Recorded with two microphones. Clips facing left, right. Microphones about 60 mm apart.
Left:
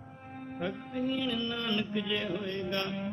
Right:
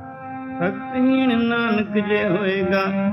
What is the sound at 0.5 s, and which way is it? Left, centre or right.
Music, right.